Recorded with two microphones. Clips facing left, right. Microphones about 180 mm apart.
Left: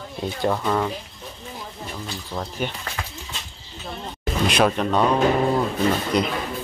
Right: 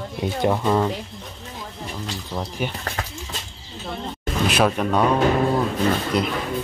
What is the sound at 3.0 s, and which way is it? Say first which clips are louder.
Horse: right 2 dB; 40° right (ahead or behind).